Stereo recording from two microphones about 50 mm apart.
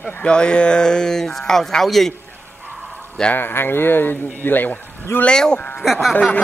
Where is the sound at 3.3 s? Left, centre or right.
Left.